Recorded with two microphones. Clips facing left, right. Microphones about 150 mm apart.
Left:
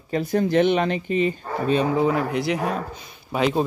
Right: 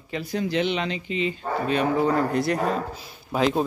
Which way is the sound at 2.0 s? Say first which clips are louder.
Even; 5° left (ahead or behind).